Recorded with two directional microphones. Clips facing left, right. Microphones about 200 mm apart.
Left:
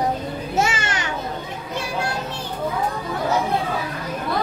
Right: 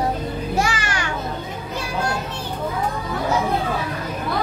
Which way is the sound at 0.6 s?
25° left (ahead or behind).